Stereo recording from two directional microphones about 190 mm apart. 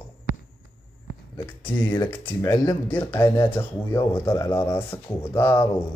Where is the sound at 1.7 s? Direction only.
10° left (ahead or behind).